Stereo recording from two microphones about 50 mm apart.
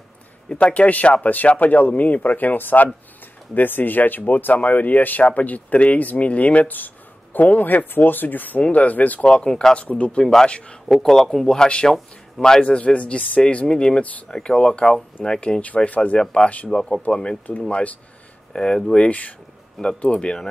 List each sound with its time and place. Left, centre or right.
0.5 s speech: left
9.2 s speech: centre
9.8 s speech: left
10.9 s speech: centre
15.6 s speech: left
18.5 s speech: centre
19.0 s speech: left